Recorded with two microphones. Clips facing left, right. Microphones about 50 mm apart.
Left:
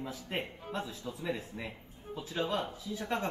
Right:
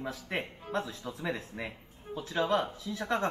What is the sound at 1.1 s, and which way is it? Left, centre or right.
Speech, right.